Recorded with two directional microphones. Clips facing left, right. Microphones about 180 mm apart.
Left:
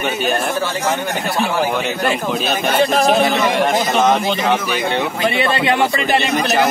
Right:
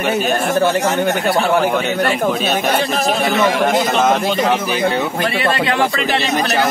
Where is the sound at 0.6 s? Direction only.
55° right (ahead or behind).